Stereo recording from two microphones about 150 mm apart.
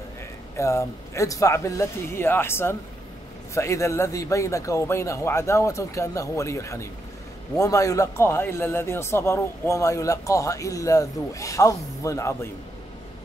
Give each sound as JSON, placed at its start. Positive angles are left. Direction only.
{"t": 0.6, "sound": "speech", "side_deg": 20}